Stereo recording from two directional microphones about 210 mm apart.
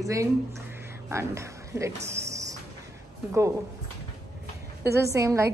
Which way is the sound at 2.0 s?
15° right (ahead or behind).